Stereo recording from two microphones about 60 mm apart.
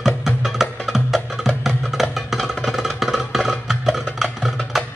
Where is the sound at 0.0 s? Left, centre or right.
Centre.